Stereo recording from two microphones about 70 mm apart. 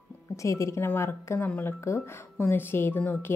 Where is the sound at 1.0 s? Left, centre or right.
Left.